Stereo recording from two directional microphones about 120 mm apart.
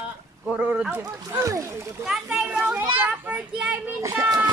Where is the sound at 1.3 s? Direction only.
25° right (ahead or behind).